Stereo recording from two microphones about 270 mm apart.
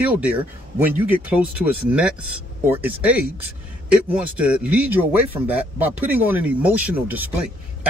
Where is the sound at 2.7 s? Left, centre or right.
Centre.